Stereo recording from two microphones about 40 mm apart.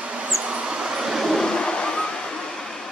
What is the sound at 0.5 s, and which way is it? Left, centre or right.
Vehicle, right.